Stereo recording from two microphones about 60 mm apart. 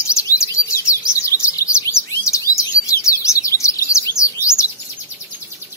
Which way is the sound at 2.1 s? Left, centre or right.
Left.